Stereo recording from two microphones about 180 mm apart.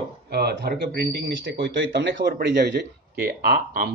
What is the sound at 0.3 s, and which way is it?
Speech, 65° right (ahead or behind).